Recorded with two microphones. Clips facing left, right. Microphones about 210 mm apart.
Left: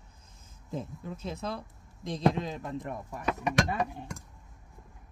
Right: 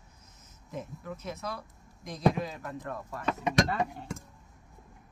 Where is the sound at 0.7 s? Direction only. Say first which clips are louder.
Left 2 dB; 25° left (ahead or behind).